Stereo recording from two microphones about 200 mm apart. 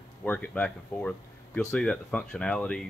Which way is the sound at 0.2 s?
10° left (ahead or behind).